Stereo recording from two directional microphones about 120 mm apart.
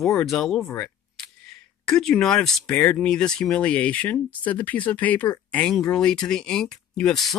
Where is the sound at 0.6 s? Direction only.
15° left (ahead or behind).